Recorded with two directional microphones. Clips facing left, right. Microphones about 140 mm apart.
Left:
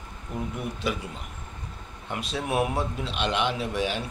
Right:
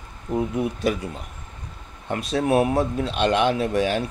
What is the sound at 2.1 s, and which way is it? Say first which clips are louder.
Speech: right 8 dB; 40° right (ahead or behind).